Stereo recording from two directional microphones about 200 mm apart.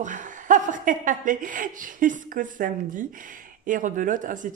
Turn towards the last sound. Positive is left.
turn(degrees=-40)  # may be behind; listen again after turning